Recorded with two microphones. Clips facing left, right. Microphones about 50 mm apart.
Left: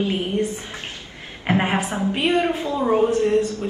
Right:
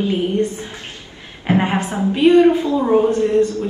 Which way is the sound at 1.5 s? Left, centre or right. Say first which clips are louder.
Right 3 dB; left.